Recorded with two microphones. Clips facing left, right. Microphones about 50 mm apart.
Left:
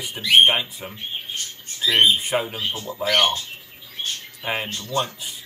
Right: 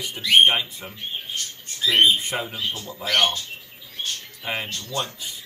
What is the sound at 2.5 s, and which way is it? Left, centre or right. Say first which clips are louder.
Speech: left 1 dB; left.